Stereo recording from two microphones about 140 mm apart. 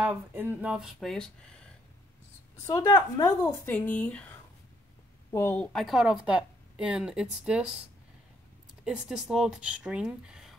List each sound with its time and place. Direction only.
0.0 s speech: 15° right (ahead or behind); by 1.3 s 5° left (ahead or behind)
2.5 s a woman's voice: 20° left (ahead or behind)
2.8 s a woman's voice: 30° left (ahead or behind)
3.3 s a woman's voice: 15° left (ahead or behind)
5.3 s speech: 20° left (ahead or behind)
5.6 s speech: 5° left (ahead or behind)
8.8 s speech: 5° right (ahead or behind)